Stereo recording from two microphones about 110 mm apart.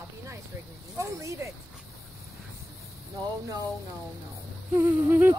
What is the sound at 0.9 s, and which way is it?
Speech, 25° right (ahead or behind).